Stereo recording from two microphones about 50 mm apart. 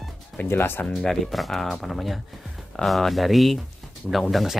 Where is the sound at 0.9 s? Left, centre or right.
Centre.